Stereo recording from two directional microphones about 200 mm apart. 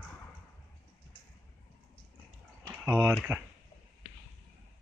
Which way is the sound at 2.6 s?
10° right (ahead or behind).